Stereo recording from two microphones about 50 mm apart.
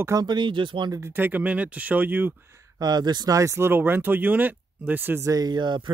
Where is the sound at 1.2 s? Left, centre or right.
Right.